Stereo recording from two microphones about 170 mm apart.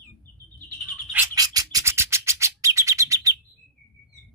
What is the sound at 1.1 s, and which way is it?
Bird, 20° right (ahead or behind).